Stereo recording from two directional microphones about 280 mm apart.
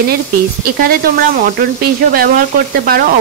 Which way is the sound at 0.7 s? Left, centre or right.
Right.